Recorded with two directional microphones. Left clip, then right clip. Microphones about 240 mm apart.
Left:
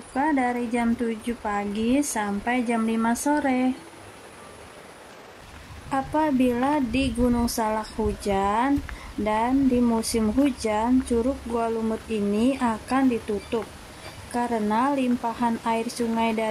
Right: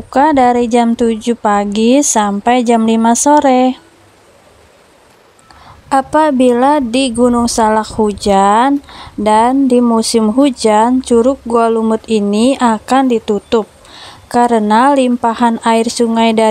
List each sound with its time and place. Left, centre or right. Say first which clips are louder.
0.1 s speech: right 15 dB; left
5.9 s speech: right 14 dB; left